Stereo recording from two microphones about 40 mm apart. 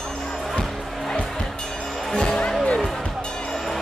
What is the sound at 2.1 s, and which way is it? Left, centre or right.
Music, centre.